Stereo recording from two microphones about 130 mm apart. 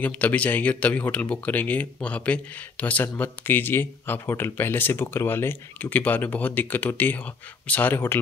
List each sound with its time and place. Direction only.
0.0 s speech: 10° left (ahead or behind)